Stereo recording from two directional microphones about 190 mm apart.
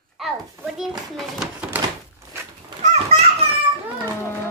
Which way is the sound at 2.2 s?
15° right (ahead or behind).